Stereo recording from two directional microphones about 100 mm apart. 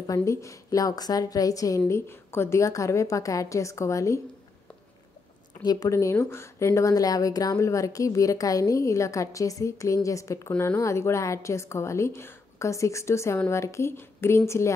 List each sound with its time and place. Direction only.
0.0 s a woman's voice: 35° left (ahead or behind)
1.9 s a woman's voice: 25° left (ahead or behind)
5.6 s a woman's voice: 40° left (ahead or behind)